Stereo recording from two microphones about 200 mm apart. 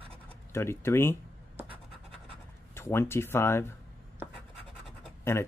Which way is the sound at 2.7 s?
10° left (ahead or behind).